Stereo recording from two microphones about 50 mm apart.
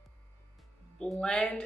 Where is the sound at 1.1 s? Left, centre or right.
Centre.